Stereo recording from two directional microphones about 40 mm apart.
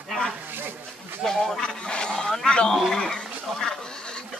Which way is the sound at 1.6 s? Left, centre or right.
Left.